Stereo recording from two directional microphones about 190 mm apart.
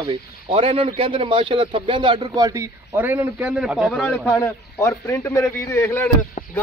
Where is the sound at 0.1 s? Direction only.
30° right (ahead or behind); by 4.4 s 5° left (ahead or behind).